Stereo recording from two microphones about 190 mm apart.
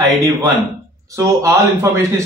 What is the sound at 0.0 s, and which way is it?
A man's voice, 20° right (ahead or behind).